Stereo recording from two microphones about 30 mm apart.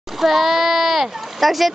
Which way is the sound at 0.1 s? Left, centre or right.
Centre.